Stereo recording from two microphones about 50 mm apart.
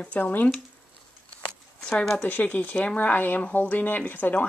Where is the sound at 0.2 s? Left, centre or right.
Left.